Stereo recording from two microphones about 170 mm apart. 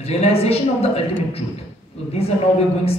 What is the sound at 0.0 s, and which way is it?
A woman's voice, 35° left (ahead or behind).